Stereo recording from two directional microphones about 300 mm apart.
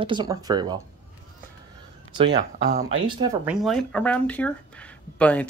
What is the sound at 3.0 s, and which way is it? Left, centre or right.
Speech, centre.